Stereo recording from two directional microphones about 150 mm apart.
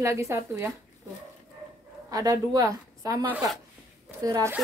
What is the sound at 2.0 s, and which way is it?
A woman's voice, 25° right (ahead or behind).